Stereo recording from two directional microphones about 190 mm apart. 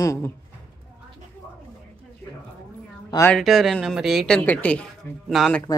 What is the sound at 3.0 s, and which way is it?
Speech, 15° left (ahead or behind).